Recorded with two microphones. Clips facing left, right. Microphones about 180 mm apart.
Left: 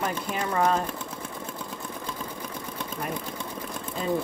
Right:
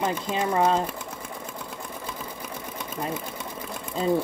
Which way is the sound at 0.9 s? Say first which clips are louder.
Even; 10° right (ahead or behind).